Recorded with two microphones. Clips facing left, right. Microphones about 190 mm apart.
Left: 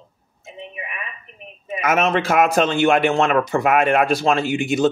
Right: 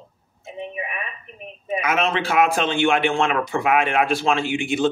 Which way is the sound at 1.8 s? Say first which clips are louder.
Left 5 dB; 45° left (ahead or behind).